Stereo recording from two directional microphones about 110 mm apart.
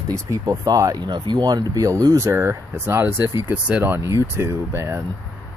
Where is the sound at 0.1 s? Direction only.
30° right (ahead or behind).